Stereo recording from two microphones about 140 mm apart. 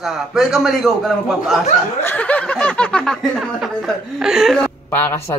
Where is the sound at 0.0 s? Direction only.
Centre (ahead or behind).